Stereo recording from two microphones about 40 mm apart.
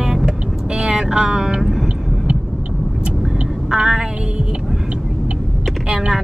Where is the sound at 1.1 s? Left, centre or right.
Centre.